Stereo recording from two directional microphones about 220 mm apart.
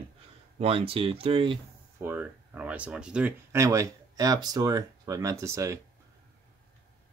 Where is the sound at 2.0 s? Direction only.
10° right (ahead or behind).